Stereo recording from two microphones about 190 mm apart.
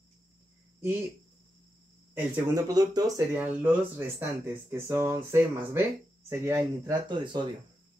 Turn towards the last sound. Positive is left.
turn(degrees=-25)  # may be behind; listen again after turning